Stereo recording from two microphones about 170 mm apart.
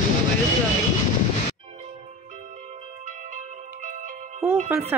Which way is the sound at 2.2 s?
45° right (ahead or behind).